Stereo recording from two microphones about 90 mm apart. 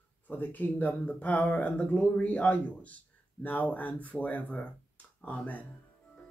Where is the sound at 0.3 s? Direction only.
20° left (ahead or behind).